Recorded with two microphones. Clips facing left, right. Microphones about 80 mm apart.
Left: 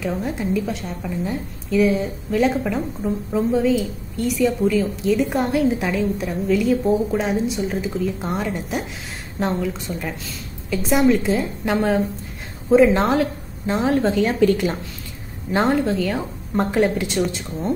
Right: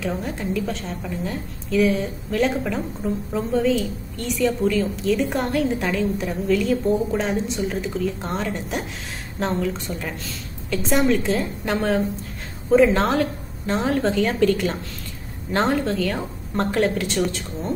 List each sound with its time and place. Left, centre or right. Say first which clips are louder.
0.0 s a woman's voice: left 2 dB; centre